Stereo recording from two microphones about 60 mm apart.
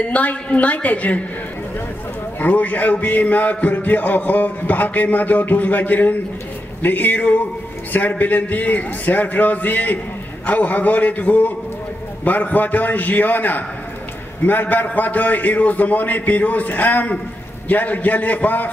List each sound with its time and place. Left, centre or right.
0.1 s music: left
2.4 s music: left